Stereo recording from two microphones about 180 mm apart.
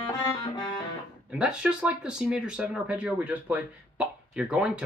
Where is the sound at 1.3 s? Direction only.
5° right (ahead or behind).